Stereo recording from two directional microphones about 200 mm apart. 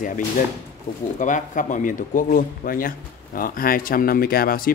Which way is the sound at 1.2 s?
40° left (ahead or behind).